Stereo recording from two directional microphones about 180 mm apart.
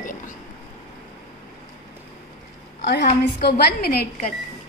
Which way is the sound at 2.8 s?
70° left (ahead or behind).